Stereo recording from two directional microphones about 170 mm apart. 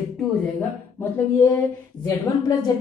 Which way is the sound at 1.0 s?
10° left (ahead or behind).